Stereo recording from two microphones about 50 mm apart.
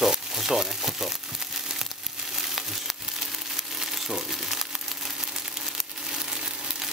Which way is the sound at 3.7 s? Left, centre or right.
Centre.